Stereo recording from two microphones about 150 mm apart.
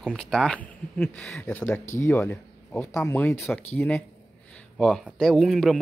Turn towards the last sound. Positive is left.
turn(degrees=0)  # may be behind; listen again after turning